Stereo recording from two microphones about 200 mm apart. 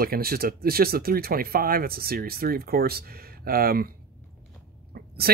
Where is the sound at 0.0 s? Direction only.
50° right (ahead or behind).